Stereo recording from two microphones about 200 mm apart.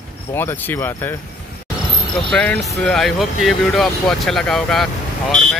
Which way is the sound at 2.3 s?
5° left (ahead or behind).